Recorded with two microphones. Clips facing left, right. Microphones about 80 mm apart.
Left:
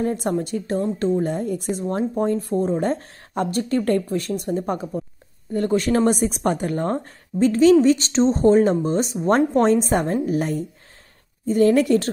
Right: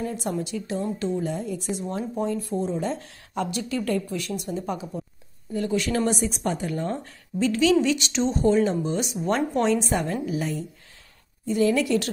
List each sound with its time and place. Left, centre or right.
0.0 s a woman's voice: left